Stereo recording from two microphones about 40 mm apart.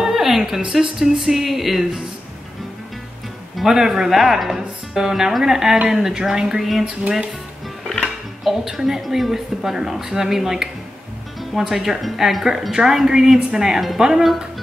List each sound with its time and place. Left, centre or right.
0.0 s a sound: centre
0.7 s speech: centre
3.5 s speech: centre
6.8 s music: right
8.5 s speech: centre
12.7 s speech: centre